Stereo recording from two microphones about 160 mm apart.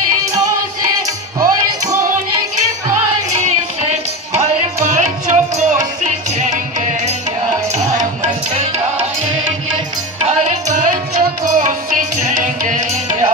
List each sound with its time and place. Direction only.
1.4 s music: 20° right (ahead or behind)
3.3 s music: 45° right (ahead or behind)
10.2 s music: 50° right (ahead or behind)